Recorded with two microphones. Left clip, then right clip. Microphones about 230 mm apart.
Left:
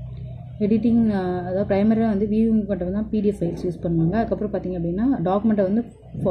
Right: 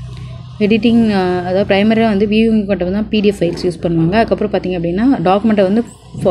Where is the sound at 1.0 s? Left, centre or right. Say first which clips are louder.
Right 9 dB; right.